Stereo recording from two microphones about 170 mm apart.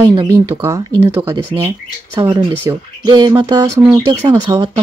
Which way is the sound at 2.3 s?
25° right (ahead or behind).